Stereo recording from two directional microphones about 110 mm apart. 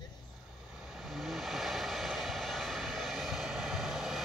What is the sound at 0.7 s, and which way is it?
Vehicle, centre (ahead or behind).